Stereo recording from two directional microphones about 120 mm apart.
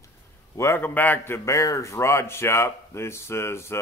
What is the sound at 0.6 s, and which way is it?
A man's voice, 20° left (ahead or behind).